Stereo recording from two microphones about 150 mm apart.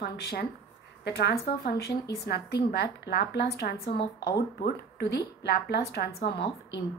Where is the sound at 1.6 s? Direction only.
90° left.